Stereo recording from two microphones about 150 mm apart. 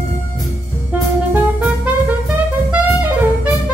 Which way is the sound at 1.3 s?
10° right (ahead or behind).